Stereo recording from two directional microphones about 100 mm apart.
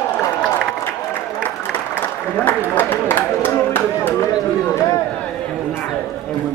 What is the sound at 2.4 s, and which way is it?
Speech, 20° left (ahead or behind).